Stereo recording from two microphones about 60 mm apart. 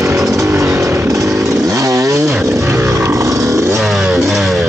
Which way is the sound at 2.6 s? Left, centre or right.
Right.